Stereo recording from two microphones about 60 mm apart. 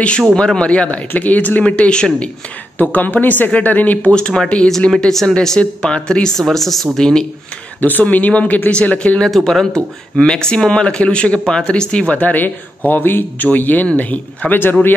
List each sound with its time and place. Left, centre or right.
0.4 s speech: centre
2.8 s speech: left
4.1 s speech: centre
7.8 s speech: left
9.3 s speech: centre; by 15.0 s left